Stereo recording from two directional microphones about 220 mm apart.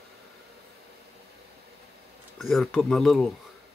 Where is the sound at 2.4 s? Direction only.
Centre (ahead or behind).